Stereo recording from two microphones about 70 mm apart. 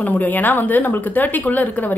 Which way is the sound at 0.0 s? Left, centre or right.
Left.